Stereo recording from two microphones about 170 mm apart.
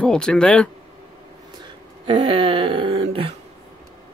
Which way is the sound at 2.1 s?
30° right (ahead or behind).